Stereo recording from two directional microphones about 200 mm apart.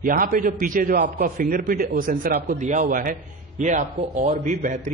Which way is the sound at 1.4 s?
45° right (ahead or behind).